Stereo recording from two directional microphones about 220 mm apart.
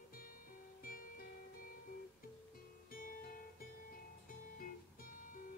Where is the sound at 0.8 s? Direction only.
40° left (ahead or behind).